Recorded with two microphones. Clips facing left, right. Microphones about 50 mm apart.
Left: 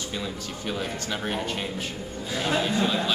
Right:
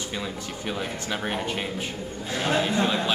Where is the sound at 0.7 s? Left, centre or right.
Centre.